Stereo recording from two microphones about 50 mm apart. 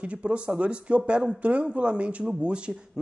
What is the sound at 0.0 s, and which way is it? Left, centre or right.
A man's voice, right.